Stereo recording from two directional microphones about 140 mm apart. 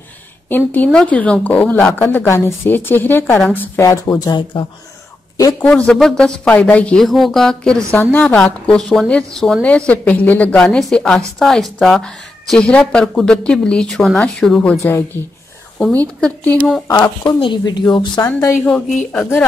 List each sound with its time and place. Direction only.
0.5 s speech: 15° left (ahead or behind); by 4.6 s 35° left (ahead or behind)
5.6 s a woman's voice: 10° left (ahead or behind)
14.8 s speech: 20° left (ahead or behind)
16.2 s speech: 10° left (ahead or behind)
16.8 s speech: 20° left (ahead or behind)
17.2 s a woman's voice: 35° left (ahead or behind)
18.2 s speech: 15° left (ahead or behind)